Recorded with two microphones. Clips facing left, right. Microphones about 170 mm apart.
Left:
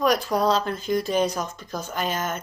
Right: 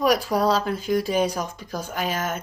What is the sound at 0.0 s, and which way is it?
Speech, 5° right (ahead or behind).